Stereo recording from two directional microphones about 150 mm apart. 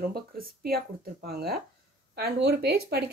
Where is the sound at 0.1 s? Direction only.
85° right.